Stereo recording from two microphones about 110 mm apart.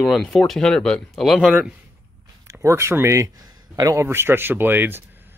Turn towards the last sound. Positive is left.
turn(degrees=-20)  # may be behind; listen again after turning